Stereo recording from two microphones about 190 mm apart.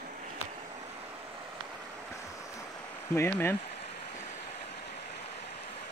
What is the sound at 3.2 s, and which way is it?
Speech, 10° left (ahead or behind).